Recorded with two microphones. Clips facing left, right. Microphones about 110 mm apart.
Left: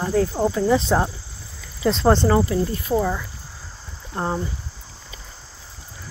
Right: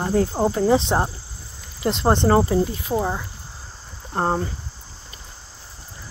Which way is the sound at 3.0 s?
25° right (ahead or behind).